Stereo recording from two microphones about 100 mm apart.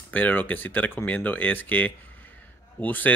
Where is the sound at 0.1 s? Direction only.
15° left (ahead or behind).